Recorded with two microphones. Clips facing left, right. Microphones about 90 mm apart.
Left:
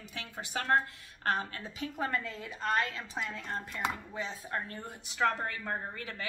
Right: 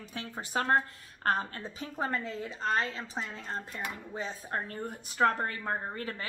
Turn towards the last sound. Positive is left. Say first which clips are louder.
# right 3 dB
turn(degrees=-35)  # may be behind; listen again after turning